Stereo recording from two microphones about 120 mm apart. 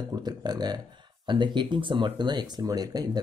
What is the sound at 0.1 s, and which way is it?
Speech, 35° right (ahead or behind).